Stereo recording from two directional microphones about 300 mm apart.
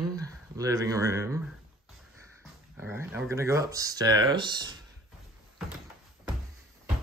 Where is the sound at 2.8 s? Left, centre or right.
Centre.